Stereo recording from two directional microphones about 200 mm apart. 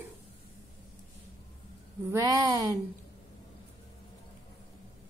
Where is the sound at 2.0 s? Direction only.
15° right (ahead or behind).